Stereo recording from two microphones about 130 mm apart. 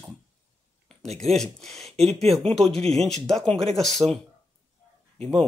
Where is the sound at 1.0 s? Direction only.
55° right (ahead or behind).